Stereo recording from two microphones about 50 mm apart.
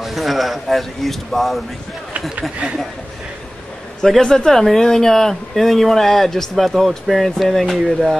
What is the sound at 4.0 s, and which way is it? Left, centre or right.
Speech, centre.